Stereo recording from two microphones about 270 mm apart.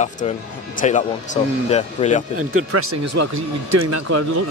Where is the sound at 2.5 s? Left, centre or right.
Right.